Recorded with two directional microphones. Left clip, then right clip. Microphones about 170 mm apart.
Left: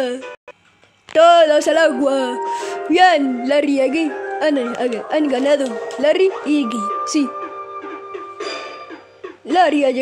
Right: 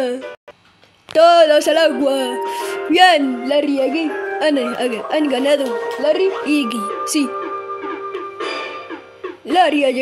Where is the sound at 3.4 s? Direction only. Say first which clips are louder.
Left 1 dB; 25° left (ahead or behind).